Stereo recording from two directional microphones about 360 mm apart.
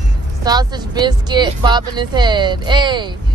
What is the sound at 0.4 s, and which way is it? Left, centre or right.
Speech, centre.